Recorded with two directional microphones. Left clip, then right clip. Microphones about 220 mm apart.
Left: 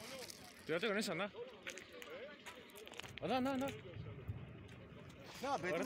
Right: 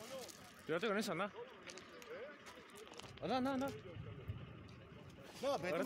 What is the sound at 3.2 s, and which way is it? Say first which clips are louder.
Speech: even; 5° left (ahead or behind).